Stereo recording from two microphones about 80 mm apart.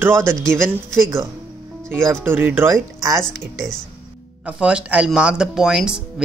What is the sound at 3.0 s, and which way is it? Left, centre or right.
Music, right.